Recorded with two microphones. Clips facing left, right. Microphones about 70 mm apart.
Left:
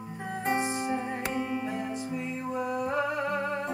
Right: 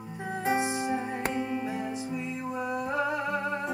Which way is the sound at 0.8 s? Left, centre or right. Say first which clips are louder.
Even; centre.